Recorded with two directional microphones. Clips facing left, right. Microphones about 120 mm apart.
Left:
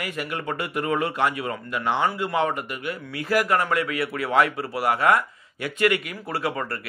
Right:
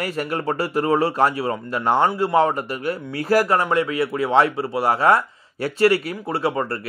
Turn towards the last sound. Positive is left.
turn(degrees=-25)  # may be behind; listen again after turning